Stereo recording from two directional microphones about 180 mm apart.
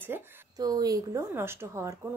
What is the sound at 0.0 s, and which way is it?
A woman's voice, 15° right (ahead or behind).